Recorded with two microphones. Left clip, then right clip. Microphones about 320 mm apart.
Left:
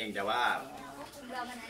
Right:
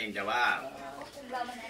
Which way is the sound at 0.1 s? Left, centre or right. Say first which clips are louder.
Right 1 dB; centre.